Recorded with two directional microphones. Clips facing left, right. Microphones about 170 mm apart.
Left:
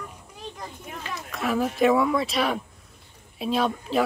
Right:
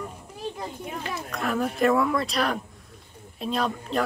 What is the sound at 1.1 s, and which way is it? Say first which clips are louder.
Speech: left 2 dB; centre (ahead or behind).